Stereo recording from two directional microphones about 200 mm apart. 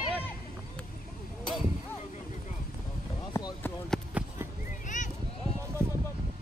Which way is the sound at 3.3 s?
15° left (ahead or behind).